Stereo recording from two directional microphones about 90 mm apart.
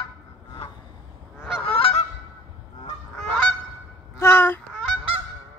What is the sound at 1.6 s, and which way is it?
Goose, 90° left.